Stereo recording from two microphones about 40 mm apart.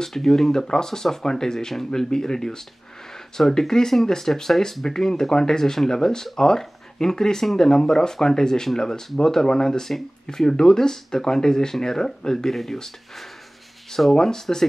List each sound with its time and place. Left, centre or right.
0.0 s speech: centre
14.1 s speech: centre